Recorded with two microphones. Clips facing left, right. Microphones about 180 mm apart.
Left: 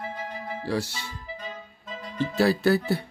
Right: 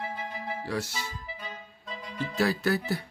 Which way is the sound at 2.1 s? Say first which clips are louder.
Left 5 dB; 30° left (ahead or behind).